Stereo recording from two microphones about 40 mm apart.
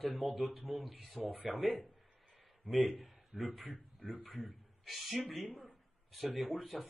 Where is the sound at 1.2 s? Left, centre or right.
Right.